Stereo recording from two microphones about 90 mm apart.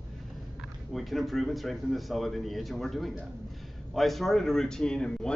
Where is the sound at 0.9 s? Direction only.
Centre (ahead or behind).